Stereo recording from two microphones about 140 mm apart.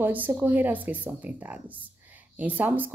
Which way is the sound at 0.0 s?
15° right (ahead or behind).